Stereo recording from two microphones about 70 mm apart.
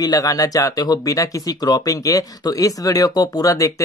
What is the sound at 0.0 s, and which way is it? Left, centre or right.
Speech, left.